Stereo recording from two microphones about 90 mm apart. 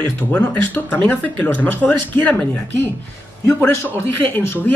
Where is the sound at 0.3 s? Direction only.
15° left (ahead or behind).